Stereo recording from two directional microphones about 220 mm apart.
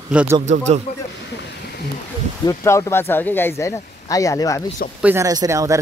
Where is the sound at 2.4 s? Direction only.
15° left (ahead or behind).